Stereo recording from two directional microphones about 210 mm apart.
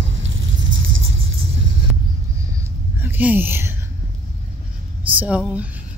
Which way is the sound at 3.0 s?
10° right (ahead or behind).